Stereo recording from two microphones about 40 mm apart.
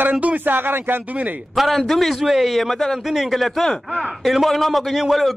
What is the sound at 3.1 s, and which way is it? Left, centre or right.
Speech, centre.